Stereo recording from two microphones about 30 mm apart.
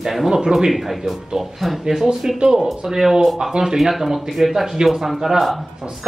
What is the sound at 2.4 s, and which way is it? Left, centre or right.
A man's voice, right.